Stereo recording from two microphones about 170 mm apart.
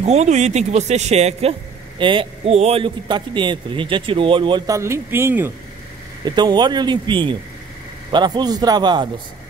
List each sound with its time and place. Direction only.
0.0 s speech: 40° right (ahead or behind)
2.0 s a man's voice: 30° right (ahead or behind); by 5.5 s 15° right (ahead or behind)
6.2 s a man's voice: 25° right (ahead or behind)